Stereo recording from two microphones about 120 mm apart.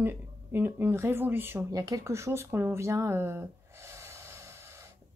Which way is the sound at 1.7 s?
30° right (ahead or behind).